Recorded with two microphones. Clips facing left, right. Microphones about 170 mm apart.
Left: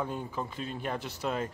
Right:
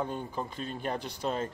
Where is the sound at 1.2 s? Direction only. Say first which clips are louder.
Even; 35° right (ahead or behind).